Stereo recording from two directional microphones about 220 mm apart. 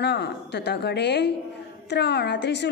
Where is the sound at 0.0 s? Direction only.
50° left (ahead or behind).